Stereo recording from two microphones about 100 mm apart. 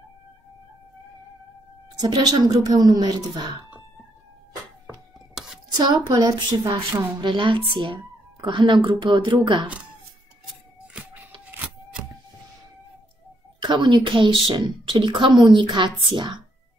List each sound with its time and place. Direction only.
2.0 s speech: 40° right (ahead or behind)
5.4 s a sound: 5° right (ahead or behind)
5.9 s a woman's voice: 45° right (ahead or behind)
13.6 s a woman's voice: 50° right (ahead or behind)